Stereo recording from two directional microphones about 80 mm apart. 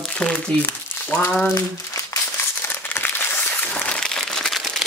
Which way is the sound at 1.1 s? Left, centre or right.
Left.